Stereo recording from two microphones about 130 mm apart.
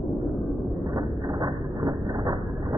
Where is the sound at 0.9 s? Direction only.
30° right (ahead or behind).